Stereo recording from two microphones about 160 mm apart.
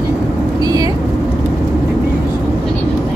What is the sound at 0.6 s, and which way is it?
Vehicle, 25° right (ahead or behind).